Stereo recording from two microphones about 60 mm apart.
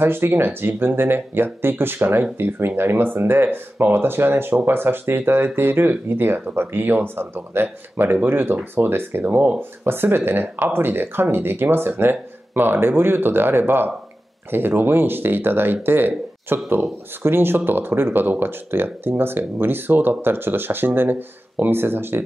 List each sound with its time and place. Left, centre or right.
0.0 s speech: right